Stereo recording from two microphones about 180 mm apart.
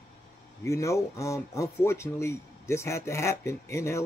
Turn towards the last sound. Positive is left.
turn(degrees=15)  # may be behind; listen again after turning